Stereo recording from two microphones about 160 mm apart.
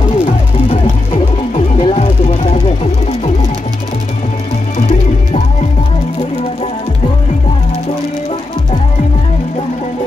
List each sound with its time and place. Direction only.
1.5 s music: 45° left (ahead or behind)